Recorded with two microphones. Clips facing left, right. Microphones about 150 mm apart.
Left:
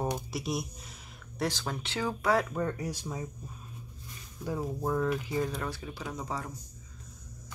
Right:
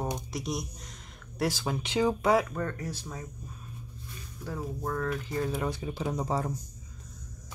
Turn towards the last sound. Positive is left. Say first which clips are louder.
# right 6 dB
turn(degrees=-35)  # may be behind; listen again after turning